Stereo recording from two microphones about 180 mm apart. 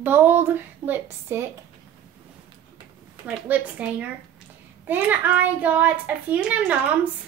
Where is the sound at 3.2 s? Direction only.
10° right (ahead or behind).